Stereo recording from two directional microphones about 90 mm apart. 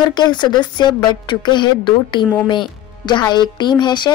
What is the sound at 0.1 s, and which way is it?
A woman's voice, 55° left (ahead or behind).